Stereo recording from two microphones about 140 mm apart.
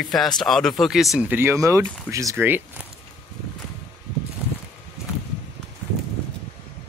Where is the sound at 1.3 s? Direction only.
15° right (ahead or behind).